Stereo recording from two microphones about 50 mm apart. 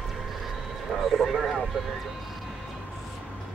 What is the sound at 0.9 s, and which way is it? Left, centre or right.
Speech, centre.